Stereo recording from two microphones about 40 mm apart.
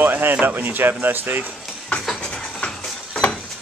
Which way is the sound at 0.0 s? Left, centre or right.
Right.